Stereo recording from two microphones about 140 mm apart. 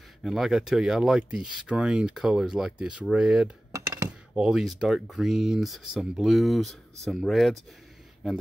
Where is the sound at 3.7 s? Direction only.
25° right (ahead or behind).